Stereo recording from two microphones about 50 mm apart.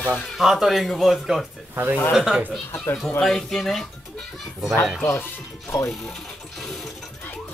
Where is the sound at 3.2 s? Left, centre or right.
Centre.